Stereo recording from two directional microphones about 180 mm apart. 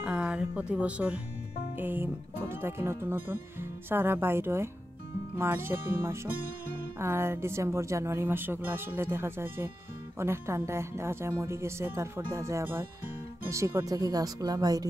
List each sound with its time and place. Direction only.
0.0 s music: 5° right (ahead or behind)
1.8 s speech: 10° right (ahead or behind)